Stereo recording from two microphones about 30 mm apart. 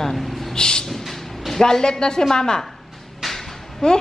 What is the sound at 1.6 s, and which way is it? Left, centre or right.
Speech, left.